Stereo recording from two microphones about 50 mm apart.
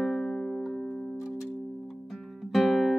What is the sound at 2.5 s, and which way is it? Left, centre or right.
Guitar, centre.